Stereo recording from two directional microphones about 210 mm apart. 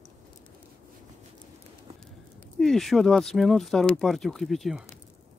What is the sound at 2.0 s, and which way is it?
Speech, centre (ahead or behind).